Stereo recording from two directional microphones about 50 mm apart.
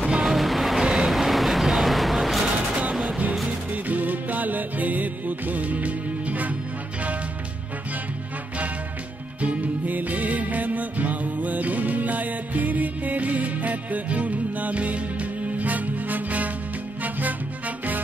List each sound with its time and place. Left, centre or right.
0.0 s vehicle: centre
0.8 s vehicle: centre
1.1 s vehicle: centre
2.8 s music: right
9.4 s music: right